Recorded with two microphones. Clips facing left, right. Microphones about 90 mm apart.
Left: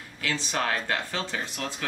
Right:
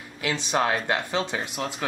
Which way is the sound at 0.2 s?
15° right (ahead or behind).